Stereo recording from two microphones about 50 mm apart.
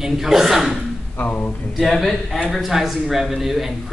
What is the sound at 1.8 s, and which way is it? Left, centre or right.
Speech, centre.